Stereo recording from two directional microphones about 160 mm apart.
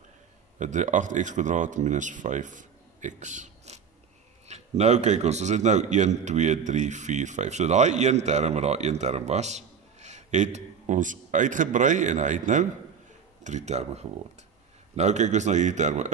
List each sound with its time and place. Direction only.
0.6 s a man's voice: 50° right (ahead or behind)